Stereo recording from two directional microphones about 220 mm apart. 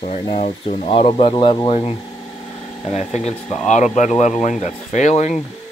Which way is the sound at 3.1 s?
30° left (ahead or behind).